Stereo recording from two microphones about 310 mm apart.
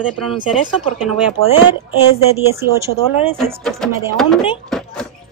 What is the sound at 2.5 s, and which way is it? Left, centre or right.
Speech, centre.